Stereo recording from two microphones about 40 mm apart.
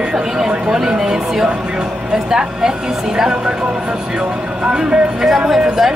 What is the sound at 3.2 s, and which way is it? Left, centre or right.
Speech, centre.